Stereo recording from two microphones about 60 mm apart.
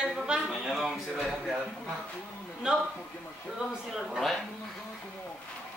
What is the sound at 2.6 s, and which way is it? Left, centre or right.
Speech, centre.